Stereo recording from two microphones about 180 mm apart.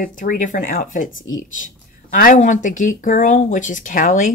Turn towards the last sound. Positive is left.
turn(degrees=45)  # may be behind; listen again after turning